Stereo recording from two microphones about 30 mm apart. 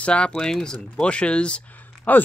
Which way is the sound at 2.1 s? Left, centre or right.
Left.